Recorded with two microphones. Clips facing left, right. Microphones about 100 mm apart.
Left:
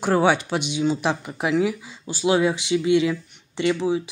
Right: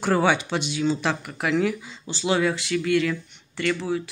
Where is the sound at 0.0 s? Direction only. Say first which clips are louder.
Left 2 dB; 5° left (ahead or behind).